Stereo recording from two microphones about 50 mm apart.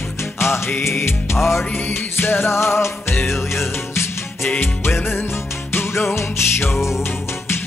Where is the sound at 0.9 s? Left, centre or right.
Left.